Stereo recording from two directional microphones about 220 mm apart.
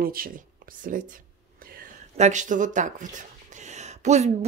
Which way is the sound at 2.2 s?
35° right (ahead or behind).